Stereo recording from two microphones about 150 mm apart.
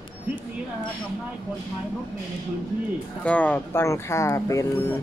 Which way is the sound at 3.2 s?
10° left (ahead or behind).